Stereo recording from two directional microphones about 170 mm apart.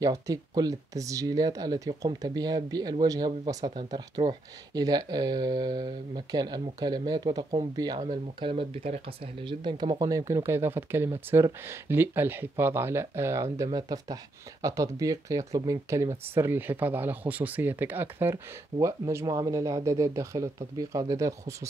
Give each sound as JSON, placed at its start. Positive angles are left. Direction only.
{"t": 0.0, "sound": "speech", "side_deg": -20}